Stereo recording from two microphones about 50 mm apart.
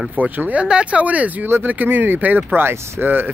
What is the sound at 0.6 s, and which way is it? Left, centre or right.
Speech, right.